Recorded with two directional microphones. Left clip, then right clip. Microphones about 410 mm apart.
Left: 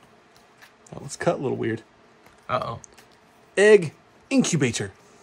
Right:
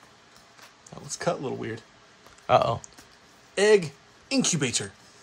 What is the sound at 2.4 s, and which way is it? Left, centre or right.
Speech, centre.